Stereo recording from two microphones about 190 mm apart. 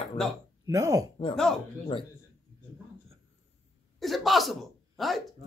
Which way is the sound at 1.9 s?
30° left (ahead or behind).